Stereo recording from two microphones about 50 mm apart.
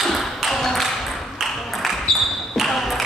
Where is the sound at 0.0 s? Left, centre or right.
Centre.